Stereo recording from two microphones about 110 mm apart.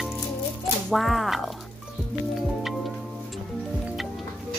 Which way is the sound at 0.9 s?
Centre (ahead or behind).